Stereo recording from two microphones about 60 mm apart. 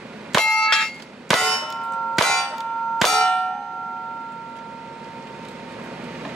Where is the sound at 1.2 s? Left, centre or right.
Centre.